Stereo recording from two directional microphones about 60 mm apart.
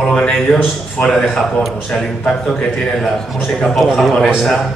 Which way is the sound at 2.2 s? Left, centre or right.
Centre.